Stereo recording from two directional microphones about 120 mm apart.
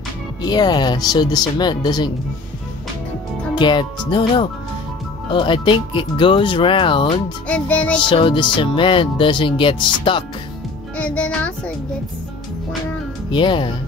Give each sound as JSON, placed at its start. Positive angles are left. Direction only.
{"t": 0.4, "sound": "speech", "side_deg": 35}
{"t": 3.5, "sound": "speech", "side_deg": 40}
{"t": 7.4, "sound": "speech", "side_deg": 10}
{"t": 8.0, "sound": "speech", "side_deg": 45}
{"t": 11.0, "sound": "speech", "side_deg": 10}
{"t": 13.3, "sound": "speech", "side_deg": 45}